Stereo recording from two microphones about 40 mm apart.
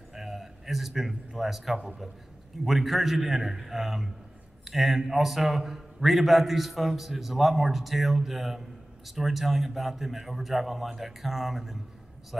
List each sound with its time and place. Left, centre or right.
0.1 s a man's voice: centre